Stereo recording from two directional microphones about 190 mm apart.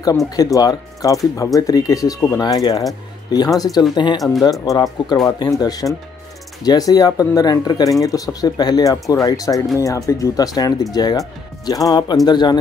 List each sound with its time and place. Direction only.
0.4 s speech: 20° left (ahead or behind)